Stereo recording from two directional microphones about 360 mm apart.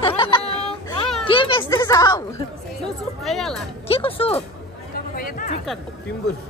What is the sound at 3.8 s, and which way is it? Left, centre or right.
Speech, centre.